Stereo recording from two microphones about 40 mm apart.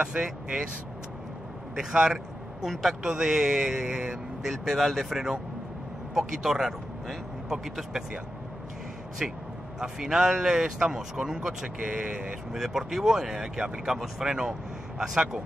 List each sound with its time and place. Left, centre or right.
0.0 s speech: right
1.8 s speech: centre
2.6 s speech: centre
3.0 s speech: centre
4.5 s speech: centre
9.2 s speech: centre
12.5 s speech: centre